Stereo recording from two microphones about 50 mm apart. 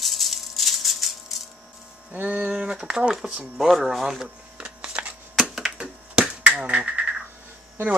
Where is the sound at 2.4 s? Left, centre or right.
Centre.